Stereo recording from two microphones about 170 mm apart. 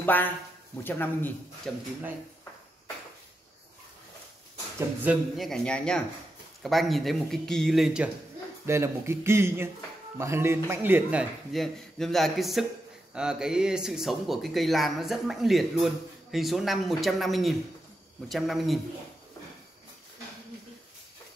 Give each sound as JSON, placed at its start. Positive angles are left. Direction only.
{"t": 0.0, "sound": "a man's voice", "side_deg": 10}
{"t": 4.7, "sound": "speech", "side_deg": -10}
{"t": 8.6, "sound": "a man's voice", "side_deg": -15}